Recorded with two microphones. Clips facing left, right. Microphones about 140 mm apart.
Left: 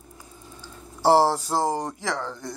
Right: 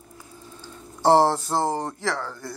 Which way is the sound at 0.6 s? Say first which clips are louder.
Even; 10° left (ahead or behind).